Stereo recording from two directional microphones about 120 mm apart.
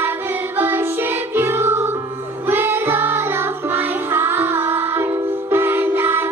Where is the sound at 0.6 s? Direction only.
15° right (ahead or behind).